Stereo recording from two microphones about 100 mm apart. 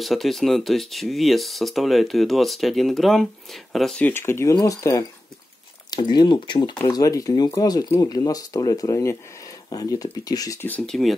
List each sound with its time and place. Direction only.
0.0 s speech: centre (ahead or behind)
4.0 s speech: 25° left (ahead or behind)
4.6 s speech: 35° left (ahead or behind)
5.9 s speech: 45° left (ahead or behind)
6.9 s speech: 35° left (ahead or behind)
10.9 s speech: centre (ahead or behind)